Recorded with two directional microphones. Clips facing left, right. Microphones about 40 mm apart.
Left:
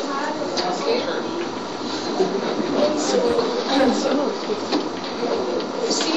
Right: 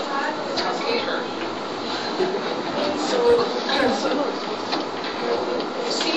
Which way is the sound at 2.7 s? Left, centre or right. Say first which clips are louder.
Left 3 dB; centre.